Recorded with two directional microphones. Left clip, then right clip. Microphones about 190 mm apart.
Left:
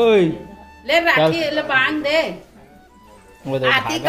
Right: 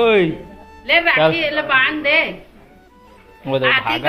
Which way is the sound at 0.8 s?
40° left (ahead or behind).